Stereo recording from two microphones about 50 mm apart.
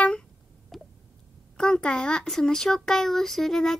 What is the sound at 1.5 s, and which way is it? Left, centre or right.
A child's voice, centre.